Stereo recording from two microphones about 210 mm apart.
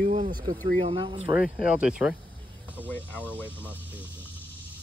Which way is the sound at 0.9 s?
25° right (ahead or behind).